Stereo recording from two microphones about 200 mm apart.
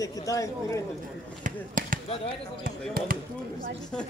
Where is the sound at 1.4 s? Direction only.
45° right (ahead or behind).